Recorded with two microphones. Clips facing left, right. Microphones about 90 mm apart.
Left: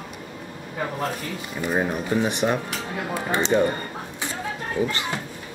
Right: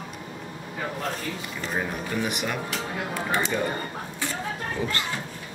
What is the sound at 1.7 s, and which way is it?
Speech, 25° left (ahead or behind).